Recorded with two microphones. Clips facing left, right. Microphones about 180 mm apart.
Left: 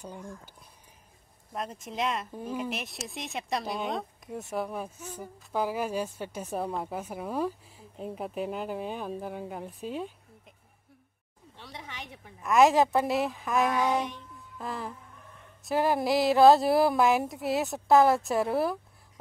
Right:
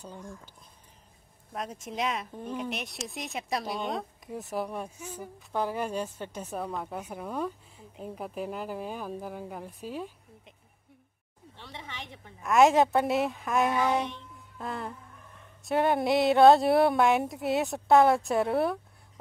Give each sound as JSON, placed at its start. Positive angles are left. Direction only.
{"t": 0.0, "sound": "speech", "side_deg": 10}
{"t": 1.5, "sound": "speech", "side_deg": 0}
{"t": 4.9, "sound": "speech", "side_deg": -10}
{"t": 5.5, "sound": "speech", "side_deg": 5}
{"t": 6.6, "sound": "speech", "side_deg": 25}
{"t": 6.9, "sound": "speech", "side_deg": 5}
{"t": 11.5, "sound": "speech", "side_deg": 5}
{"t": 14.3, "sound": "music", "side_deg": 0}
{"t": 15.6, "sound": "speech", "side_deg": 0}